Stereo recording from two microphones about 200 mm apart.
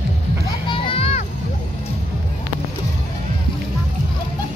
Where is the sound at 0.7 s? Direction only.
30° left (ahead or behind).